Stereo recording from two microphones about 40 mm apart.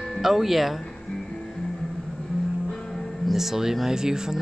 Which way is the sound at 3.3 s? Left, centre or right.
Centre.